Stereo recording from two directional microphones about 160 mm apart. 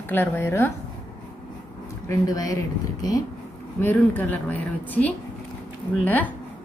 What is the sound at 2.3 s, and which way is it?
Speech, 20° left (ahead or behind).